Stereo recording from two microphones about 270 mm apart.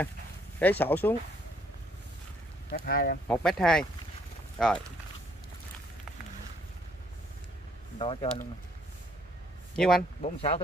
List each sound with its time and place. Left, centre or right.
0.6 s speech: centre
2.7 s speech: left
3.3 s speech: centre
8.0 s speech: centre
9.8 s speech: centre
10.2 s speech: left